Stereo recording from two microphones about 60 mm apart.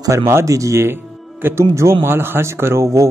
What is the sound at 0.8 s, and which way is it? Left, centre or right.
Music, right.